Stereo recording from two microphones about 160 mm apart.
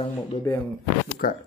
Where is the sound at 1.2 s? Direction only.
60° left (ahead or behind).